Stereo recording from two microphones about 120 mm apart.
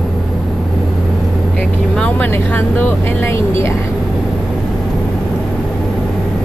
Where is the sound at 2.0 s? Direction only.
15° left (ahead or behind).